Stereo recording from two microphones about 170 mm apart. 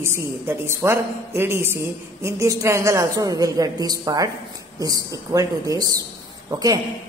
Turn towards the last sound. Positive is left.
turn(degrees=-20)  # may be behind; listen again after turning